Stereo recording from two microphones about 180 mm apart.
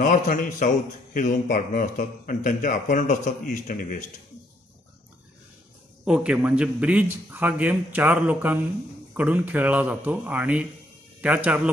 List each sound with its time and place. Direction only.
0.0 s speech: 45° left (ahead or behind)
6.0 s a man's voice: 5° right (ahead or behind)